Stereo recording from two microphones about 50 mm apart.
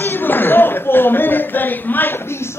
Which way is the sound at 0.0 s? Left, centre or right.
Left.